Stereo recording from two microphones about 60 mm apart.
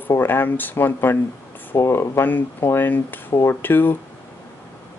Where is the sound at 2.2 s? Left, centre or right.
Left.